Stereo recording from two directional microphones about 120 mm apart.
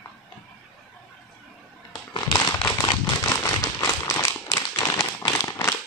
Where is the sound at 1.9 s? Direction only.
35° left (ahead or behind).